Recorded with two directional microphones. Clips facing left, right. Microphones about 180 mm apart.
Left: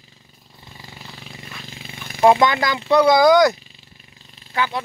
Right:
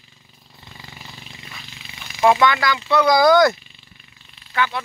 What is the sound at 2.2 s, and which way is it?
Speech, 30° left (ahead or behind).